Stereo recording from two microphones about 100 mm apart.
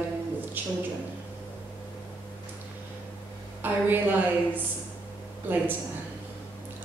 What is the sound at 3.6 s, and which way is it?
Speech, 20° right (ahead or behind).